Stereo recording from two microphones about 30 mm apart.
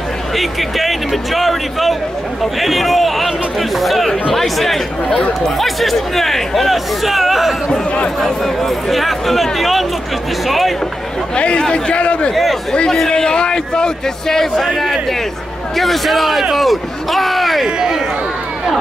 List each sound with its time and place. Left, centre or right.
0.4 s speech: centre
8.2 s speech: centre
11.3 s a man's voice: left
13.1 s a man's voice: left
15.7 s speech: centre
17.6 s a sound: right